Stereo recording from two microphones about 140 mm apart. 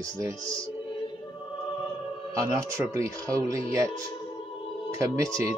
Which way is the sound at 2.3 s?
20° right (ahead or behind).